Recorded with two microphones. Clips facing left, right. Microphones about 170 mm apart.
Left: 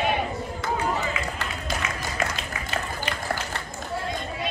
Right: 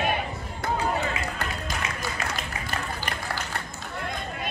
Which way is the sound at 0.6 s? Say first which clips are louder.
Right 1 dB; 60° right (ahead or behind).